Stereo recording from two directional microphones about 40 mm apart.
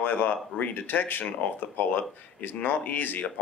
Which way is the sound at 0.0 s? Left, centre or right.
Left.